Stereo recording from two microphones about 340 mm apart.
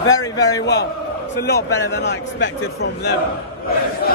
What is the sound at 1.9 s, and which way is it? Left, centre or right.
Speech, left.